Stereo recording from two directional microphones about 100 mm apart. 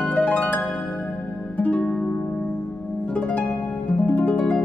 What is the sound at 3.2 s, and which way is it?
Harp, 10° left (ahead or behind).